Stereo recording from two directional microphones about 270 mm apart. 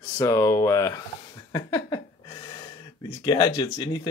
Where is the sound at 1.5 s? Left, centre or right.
Centre.